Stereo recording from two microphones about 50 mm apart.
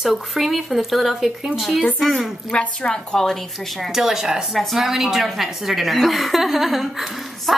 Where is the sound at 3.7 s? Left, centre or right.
Centre.